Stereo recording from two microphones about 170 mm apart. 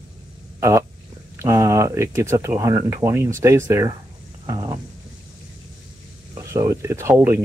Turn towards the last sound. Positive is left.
turn(degrees=-15)  # may be behind; listen again after turning